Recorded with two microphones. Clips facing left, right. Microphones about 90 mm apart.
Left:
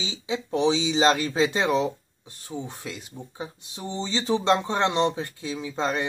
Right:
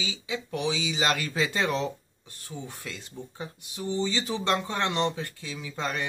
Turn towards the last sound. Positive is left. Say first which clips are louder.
# left 5 dB
turn(degrees=25)  # may be behind; listen again after turning